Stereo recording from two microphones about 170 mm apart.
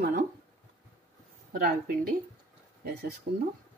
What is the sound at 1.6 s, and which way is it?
Speech, 60° right (ahead or behind).